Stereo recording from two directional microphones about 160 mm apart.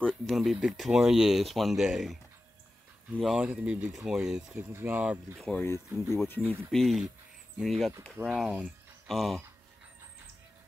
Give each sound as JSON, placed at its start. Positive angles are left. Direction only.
{"t": 0.0, "sound": "speech", "side_deg": 0}
{"t": 3.2, "sound": "speech", "side_deg": -5}
{"t": 5.4, "sound": "speech", "side_deg": 5}
{"t": 6.7, "sound": "speech", "side_deg": 0}